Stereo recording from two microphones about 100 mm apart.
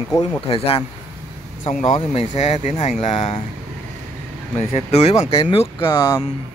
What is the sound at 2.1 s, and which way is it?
Speech, 80° left.